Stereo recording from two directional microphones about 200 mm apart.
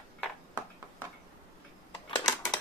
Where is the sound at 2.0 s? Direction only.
20° left (ahead or behind).